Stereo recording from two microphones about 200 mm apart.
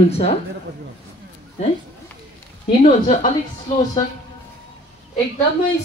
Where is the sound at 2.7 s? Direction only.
30° left (ahead or behind).